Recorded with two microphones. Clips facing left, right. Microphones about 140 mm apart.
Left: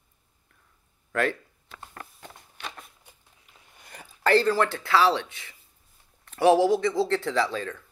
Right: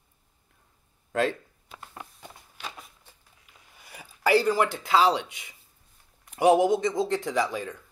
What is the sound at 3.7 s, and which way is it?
Speech, 5° right (ahead or behind).